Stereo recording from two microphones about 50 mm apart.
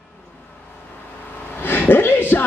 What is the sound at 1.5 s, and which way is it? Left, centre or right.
Speech, left.